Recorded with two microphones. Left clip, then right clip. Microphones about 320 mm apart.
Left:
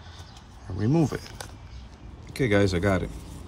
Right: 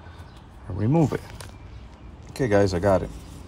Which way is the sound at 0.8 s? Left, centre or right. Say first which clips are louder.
Right 2 dB; centre.